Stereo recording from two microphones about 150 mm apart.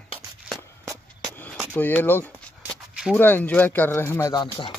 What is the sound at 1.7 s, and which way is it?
Speech, 10° left (ahead or behind).